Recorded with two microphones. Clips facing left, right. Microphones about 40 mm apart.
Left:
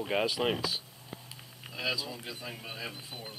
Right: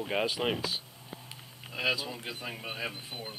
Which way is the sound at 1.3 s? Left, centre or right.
Right.